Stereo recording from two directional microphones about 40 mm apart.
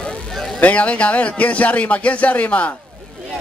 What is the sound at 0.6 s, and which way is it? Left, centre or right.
A man's voice, left.